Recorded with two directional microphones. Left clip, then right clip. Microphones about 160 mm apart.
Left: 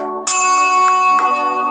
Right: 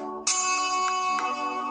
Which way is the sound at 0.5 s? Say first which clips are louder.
Left 16 dB; 15° right (ahead or behind).